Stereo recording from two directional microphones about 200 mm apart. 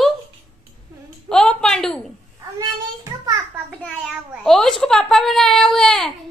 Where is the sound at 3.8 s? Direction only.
5° left (ahead or behind).